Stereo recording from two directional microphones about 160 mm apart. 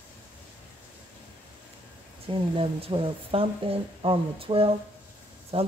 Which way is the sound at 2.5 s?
35° right (ahead or behind).